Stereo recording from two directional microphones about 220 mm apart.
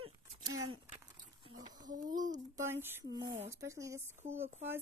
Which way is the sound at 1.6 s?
20° right (ahead or behind).